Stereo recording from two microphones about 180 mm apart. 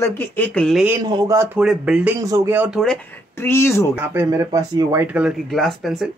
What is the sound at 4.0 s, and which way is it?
Speech, 15° right (ahead or behind).